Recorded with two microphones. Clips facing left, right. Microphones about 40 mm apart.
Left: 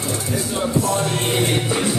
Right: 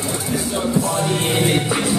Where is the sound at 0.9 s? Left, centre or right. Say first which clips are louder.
Right 1 dB; centre.